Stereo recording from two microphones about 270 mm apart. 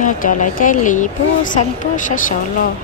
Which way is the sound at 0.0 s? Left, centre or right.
Left.